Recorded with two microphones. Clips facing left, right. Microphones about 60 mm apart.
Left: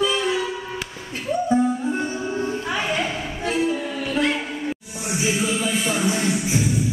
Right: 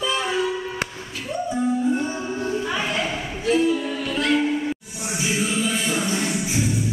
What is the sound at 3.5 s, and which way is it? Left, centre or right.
Music, left.